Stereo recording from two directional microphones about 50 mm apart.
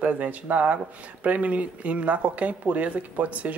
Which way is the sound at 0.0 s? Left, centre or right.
Right.